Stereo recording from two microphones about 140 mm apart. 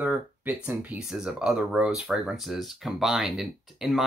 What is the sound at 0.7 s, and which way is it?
Speech, 10° right (ahead or behind).